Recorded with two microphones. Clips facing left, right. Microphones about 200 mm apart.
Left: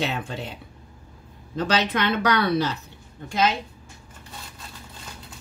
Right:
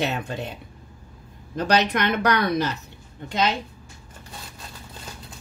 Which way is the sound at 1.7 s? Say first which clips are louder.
Right 2 dB; 15° right (ahead or behind).